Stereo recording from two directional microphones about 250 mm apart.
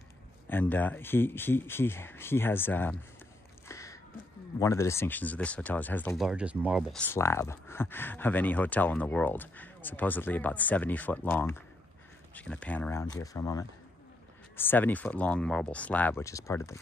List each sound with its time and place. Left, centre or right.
0.5 s speech: centre
3.6 s a sound: centre
4.6 s speech: centre